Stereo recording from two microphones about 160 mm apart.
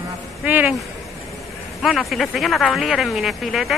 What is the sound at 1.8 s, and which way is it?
Speech, centre (ahead or behind).